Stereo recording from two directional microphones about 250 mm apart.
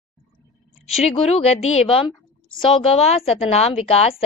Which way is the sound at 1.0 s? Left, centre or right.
Left.